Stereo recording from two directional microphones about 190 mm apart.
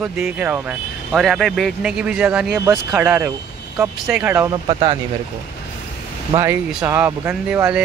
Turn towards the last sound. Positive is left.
turn(degrees=-5)  # may be behind; listen again after turning